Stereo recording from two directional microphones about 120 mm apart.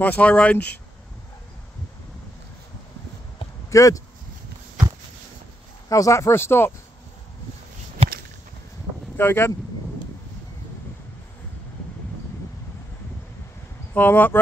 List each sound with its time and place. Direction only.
0.0 s speech: 10° left (ahead or behind)
3.7 s speech: 25° left (ahead or behind)
5.9 s speech: 30° left (ahead or behind)
9.1 s speech: 20° left (ahead or behind)
13.9 s speech: 15° left (ahead or behind)